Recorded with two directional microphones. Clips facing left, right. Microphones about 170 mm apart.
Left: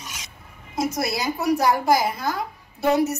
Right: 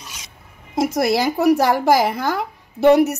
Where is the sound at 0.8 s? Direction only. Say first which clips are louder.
Right 7 dB; 90° right.